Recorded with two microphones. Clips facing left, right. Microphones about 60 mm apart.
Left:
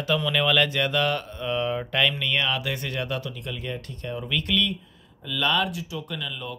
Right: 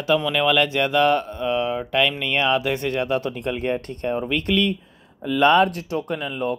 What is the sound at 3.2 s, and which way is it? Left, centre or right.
Speech, right.